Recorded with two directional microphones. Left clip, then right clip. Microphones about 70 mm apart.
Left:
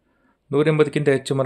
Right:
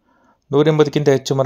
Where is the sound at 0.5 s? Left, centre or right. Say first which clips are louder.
Right 4 dB; right.